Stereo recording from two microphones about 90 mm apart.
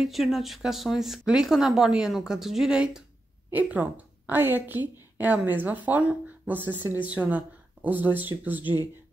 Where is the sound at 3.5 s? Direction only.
20° right (ahead or behind).